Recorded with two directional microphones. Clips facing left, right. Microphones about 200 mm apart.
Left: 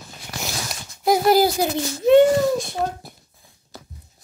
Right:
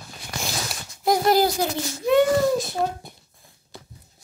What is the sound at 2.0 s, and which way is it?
Speech, 25° left (ahead or behind).